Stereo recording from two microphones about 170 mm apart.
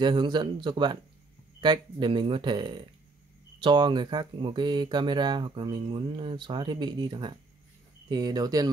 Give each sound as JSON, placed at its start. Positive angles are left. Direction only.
{"t": 0.0, "sound": "speech", "side_deg": -25}